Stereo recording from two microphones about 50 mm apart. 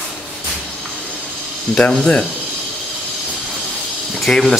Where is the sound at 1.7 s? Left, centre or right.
Left.